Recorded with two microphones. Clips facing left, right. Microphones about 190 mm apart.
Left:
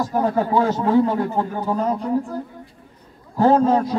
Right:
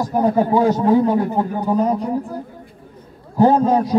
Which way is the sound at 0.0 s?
15° right (ahead or behind).